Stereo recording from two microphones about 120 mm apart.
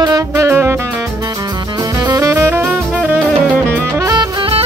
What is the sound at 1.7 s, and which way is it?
Music, 30° right (ahead or behind).